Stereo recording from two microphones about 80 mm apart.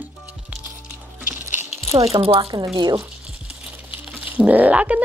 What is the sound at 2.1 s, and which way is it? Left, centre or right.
Speech, right.